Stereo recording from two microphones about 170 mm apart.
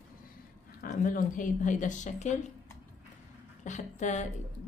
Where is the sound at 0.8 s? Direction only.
50° left (ahead or behind).